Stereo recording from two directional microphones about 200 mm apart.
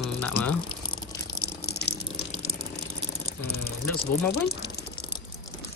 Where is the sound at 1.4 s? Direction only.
55° left (ahead or behind).